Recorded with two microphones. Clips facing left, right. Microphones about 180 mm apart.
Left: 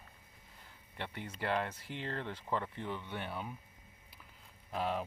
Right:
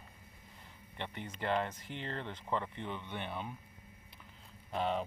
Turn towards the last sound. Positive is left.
turn(degrees=5)  # may be behind; listen again after turning